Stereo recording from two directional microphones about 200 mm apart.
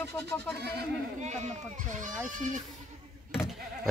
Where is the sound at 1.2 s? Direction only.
35° right (ahead or behind).